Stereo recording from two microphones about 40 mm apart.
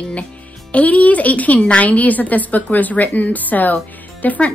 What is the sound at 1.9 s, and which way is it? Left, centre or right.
A woman's voice, left.